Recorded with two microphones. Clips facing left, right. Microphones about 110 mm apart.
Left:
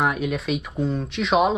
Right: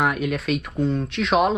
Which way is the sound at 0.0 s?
Centre (ahead or behind).